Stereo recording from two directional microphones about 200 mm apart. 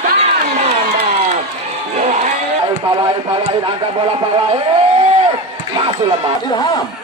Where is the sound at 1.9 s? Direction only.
35° right (ahead or behind).